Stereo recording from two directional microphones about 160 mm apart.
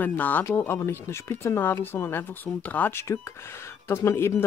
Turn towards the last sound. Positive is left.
turn(degrees=15)  # may be behind; listen again after turning